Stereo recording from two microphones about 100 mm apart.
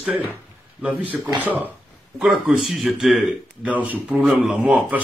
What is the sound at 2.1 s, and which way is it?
A man's voice, 5° right (ahead or behind).